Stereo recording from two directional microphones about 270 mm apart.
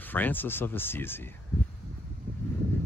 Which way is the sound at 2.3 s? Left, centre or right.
Right.